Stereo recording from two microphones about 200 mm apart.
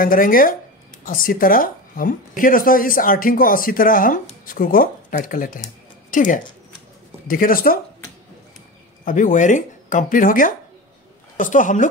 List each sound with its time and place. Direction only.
0.0 s speech: 45° left (ahead or behind)
9.0 s speech: 40° left (ahead or behind)